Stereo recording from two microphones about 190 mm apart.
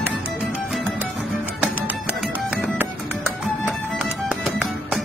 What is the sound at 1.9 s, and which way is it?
Music, 5° right (ahead or behind).